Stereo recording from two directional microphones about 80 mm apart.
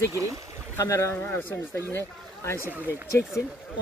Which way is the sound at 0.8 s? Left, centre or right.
Left.